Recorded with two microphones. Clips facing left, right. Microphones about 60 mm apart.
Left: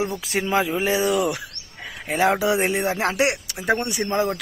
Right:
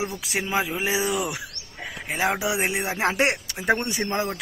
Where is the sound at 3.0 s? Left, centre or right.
Right.